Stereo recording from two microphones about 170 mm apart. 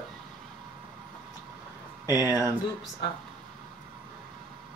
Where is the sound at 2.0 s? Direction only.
20° left (ahead or behind).